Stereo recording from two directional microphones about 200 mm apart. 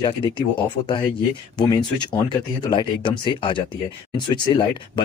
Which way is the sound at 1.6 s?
20° left (ahead or behind).